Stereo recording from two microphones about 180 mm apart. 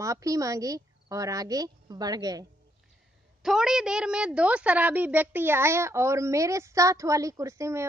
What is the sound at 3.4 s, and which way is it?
A woman's voice, 5° right (ahead or behind).